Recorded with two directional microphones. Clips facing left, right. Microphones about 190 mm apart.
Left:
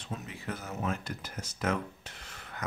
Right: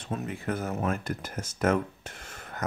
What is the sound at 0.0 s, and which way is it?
Speech, 50° right (ahead or behind).